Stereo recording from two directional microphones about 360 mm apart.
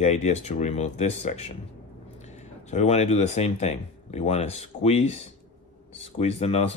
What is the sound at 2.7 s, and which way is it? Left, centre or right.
A man's voice, centre.